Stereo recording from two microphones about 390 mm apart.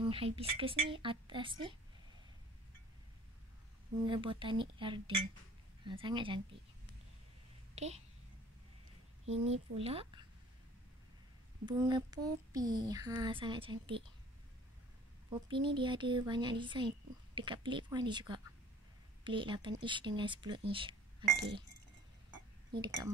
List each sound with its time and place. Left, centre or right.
0.0 s speech: centre
4.0 s speech: centre
7.7 s a child's voice: centre
9.3 s speech: centre
11.6 s speech: centre
15.2 s speech: centre
20.7 s a sound: centre